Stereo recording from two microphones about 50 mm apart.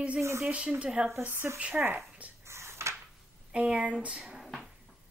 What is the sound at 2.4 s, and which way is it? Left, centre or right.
Drawer open or close, right.